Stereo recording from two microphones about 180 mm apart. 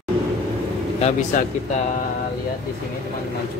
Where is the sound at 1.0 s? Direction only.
40° left (ahead or behind).